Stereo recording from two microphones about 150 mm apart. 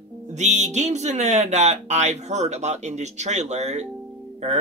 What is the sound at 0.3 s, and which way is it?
Speech, 50° right (ahead or behind).